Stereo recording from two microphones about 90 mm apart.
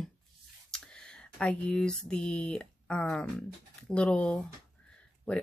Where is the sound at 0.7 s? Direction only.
10° left (ahead or behind).